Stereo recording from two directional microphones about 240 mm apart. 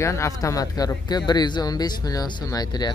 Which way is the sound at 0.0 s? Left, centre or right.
Centre.